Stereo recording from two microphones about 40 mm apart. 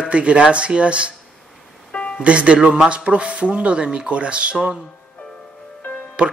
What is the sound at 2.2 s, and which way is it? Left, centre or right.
Speech, right.